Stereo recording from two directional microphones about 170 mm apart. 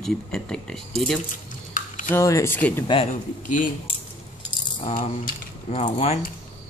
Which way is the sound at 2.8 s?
30° left (ahead or behind).